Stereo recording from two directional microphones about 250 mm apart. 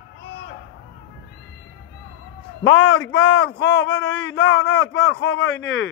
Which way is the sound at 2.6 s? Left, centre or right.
Left.